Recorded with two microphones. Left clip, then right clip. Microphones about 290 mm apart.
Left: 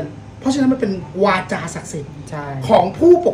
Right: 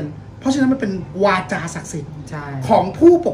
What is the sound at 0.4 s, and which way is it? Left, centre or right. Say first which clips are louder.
A woman's voice: left 1 dB; centre.